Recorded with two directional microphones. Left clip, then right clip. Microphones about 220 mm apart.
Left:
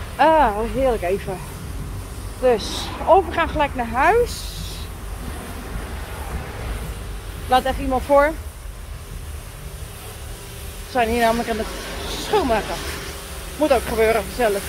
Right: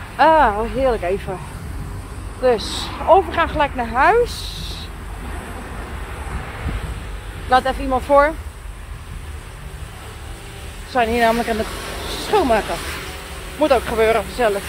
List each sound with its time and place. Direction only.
0.2 s speech: 5° left (ahead or behind)
2.4 s speech: 5° left (ahead or behind)
7.4 s speech: 5° left (ahead or behind)
10.9 s speech: centre (ahead or behind)
11.1 s speech: 15° right (ahead or behind)
12.2 s speech: 25° right (ahead or behind)
13.6 s speech: centre (ahead or behind)